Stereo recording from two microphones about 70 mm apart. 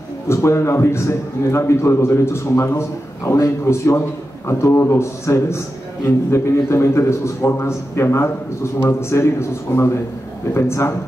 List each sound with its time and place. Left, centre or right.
0.3 s a man's voice: left